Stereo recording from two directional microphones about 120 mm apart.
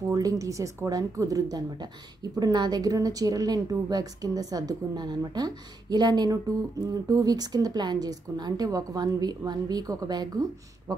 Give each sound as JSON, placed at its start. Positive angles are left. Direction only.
{"t": 0.1, "sound": "a woman's voice", "side_deg": -30}